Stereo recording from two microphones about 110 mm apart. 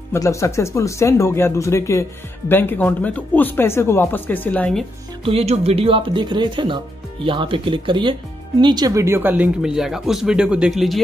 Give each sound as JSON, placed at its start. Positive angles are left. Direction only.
{"t": 0.1, "sound": "speech", "side_deg": 25}
{"t": 5.2, "sound": "speech", "side_deg": -70}